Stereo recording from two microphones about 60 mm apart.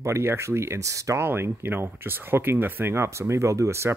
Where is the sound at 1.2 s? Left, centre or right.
Right.